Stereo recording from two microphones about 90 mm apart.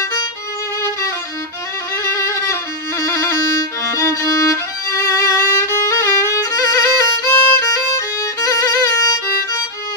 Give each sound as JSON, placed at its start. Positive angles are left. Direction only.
{"t": 2.0, "sound": "music", "side_deg": 30}
{"t": 3.8, "sound": "violin", "side_deg": 35}